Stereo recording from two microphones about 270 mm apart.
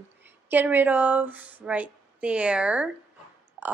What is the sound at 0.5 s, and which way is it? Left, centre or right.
A woman's voice, centre.